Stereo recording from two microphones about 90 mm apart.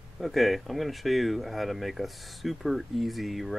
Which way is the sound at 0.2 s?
Centre (ahead or behind).